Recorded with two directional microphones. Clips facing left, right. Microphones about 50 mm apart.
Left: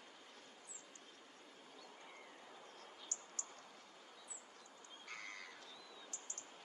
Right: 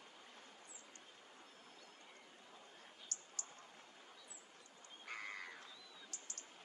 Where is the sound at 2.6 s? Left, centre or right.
Centre.